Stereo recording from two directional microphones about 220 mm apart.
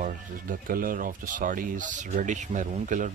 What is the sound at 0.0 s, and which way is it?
Speech, 40° right (ahead or behind).